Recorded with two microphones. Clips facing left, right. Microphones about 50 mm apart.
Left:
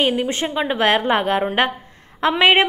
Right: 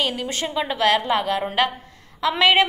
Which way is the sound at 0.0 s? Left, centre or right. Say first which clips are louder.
Left 5 dB; left.